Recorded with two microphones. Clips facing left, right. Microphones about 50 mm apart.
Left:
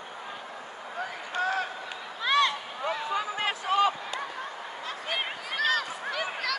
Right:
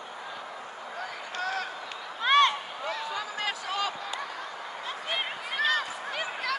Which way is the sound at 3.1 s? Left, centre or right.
Left.